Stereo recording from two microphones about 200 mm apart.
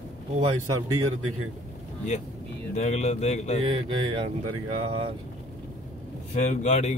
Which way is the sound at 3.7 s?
25° right (ahead or behind).